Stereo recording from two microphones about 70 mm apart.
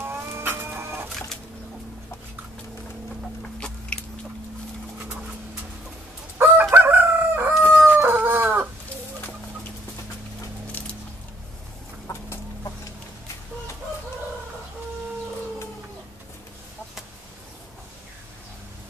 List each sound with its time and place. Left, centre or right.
0.0 s music: right
3.5 s biting: centre
6.3 s chicken: right
6.7 s crowing: right
7.7 s howl: right
10.8 s a sound: left
12.1 s chicken: left